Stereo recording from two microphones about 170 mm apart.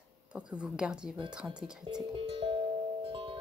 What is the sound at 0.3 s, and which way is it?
Speech, 5° right (ahead or behind).